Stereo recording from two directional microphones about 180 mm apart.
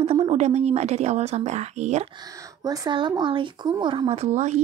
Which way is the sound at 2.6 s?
20° right (ahead or behind).